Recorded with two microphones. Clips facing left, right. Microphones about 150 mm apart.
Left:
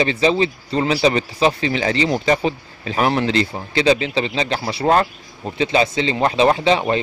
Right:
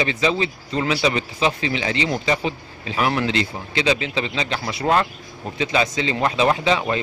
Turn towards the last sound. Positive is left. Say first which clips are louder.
# left 3 dB
turn(degrees=30)  # may be behind; listen again after turning